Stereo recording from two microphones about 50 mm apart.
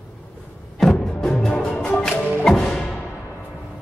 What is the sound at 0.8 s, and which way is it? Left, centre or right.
Music, centre.